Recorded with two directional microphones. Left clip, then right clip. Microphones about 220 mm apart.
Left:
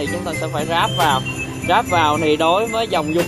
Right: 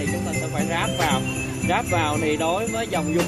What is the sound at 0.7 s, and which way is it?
Speech, 25° left (ahead or behind).